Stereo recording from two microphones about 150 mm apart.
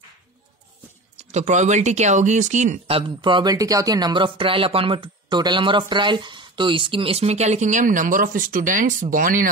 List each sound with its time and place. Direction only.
1.1 s speech: 50° right (ahead or behind)
3.0 s speech: 35° right (ahead or behind); by 9.5 s 65° right (ahead or behind)